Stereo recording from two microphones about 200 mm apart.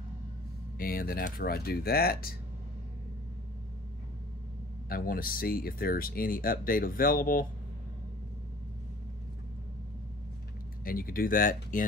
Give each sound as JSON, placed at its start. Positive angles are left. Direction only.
{"t": 0.7, "sound": "speech", "side_deg": 45}
{"t": 4.8, "sound": "speech", "side_deg": 45}
{"t": 10.8, "sound": "speech", "side_deg": 45}